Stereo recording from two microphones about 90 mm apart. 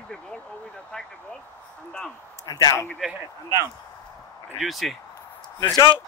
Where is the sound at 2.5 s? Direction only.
50° left (ahead or behind).